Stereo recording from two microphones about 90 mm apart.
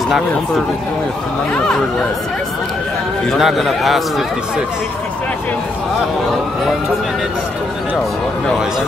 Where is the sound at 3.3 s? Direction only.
Centre (ahead or behind).